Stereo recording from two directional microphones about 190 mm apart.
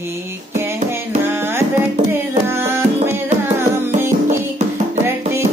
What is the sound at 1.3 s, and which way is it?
Music, 10° right (ahead or behind).